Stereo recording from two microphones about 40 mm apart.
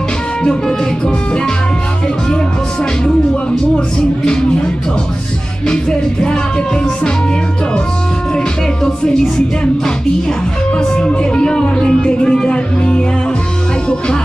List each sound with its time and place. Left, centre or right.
0.4 s speech: left
3.7 s music: centre
5.7 s speech: left
11.0 s speech: left